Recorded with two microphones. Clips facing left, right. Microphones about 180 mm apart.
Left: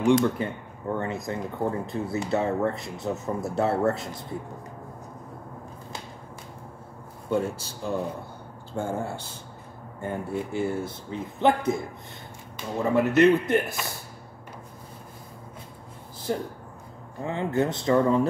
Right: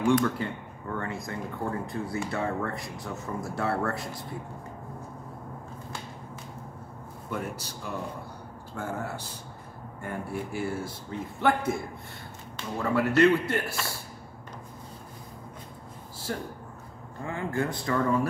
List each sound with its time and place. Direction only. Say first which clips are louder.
0.2 s speech: left 3 dB; 20° left (ahead or behind)
7.2 s speech: left 8 dB; 25° left (ahead or behind)
16.3 s speech: left 5 dB; 20° left (ahead or behind)